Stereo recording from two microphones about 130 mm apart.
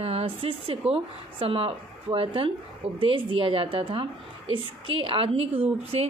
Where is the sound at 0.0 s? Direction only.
50° right (ahead or behind).